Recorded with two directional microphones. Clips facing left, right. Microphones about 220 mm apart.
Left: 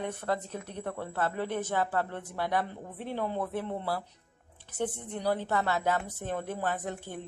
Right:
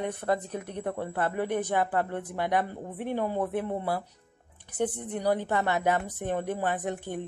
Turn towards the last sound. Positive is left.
turn(degrees=-15)  # may be behind; listen again after turning